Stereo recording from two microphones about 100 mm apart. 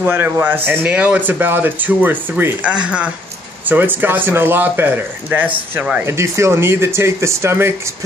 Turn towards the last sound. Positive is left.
turn(degrees=-25)  # may be behind; listen again after turning